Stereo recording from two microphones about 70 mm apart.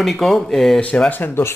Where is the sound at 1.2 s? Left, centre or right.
Left.